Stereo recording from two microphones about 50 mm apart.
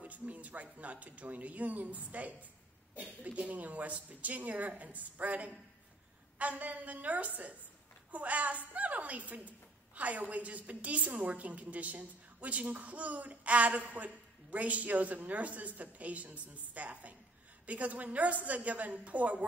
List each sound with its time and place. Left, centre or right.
0.0 s a woman's voice: right